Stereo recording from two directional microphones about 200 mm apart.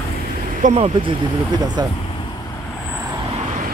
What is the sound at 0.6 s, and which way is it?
Speech, 30° right (ahead or behind).